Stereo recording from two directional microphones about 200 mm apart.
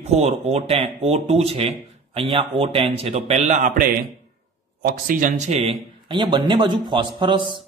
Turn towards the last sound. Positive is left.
turn(degrees=-25)  # may be behind; listen again after turning